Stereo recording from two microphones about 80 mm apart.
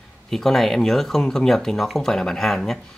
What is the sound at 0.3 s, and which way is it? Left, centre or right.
Speech, centre.